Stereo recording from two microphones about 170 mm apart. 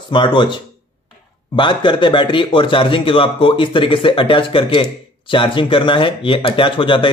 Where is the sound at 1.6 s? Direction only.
30° left (ahead or behind).